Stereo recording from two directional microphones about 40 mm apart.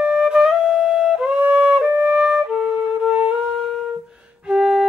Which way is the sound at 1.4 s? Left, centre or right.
Right.